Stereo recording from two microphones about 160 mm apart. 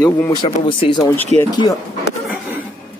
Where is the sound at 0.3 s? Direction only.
30° left (ahead or behind).